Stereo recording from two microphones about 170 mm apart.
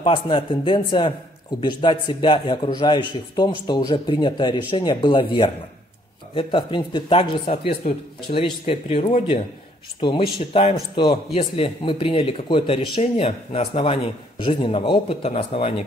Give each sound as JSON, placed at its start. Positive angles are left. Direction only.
{"t": 0.0, "sound": "a man's voice", "side_deg": 30}